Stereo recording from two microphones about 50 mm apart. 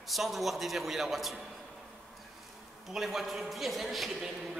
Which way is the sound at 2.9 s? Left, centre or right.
Centre.